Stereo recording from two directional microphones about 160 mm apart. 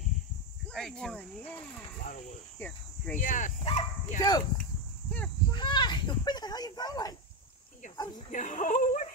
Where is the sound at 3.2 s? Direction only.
55° left (ahead or behind).